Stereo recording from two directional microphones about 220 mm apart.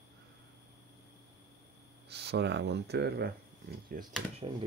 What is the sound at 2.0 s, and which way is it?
Speech, 50° right (ahead or behind).